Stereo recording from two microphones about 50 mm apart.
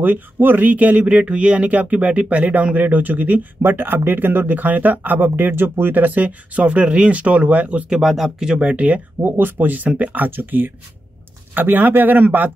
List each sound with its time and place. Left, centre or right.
0.0 s speech: right
7.9 s speech: centre
8.5 s speech: right
9.2 s speech: right